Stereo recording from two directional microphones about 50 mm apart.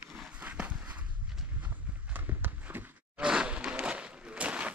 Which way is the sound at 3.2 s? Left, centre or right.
Centre.